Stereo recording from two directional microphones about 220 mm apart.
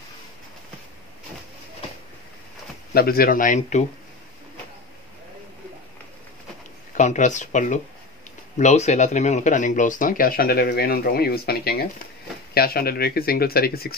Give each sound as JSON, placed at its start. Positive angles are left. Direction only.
{"t": 2.9, "sound": "speech", "side_deg": 45}
{"t": 7.0, "sound": "speech", "side_deg": 35}